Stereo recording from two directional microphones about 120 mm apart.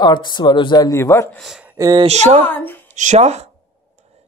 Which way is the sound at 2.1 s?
65° right (ahead or behind).